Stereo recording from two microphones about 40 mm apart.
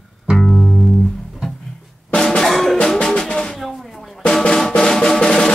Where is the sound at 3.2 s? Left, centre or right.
Left.